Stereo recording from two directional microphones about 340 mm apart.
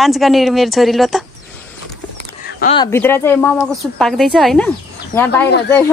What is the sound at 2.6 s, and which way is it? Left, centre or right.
Speech, centre.